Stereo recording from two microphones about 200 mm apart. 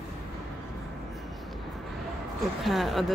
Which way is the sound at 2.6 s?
Centre (ahead or behind).